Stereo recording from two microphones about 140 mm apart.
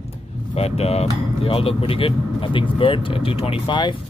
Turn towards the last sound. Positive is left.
turn(degrees=35)  # may be behind; listen again after turning